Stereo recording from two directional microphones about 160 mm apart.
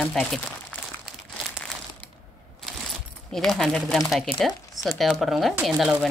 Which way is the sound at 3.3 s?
Centre (ahead or behind).